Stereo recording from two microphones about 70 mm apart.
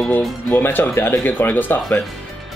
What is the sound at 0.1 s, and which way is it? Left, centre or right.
Speech, left.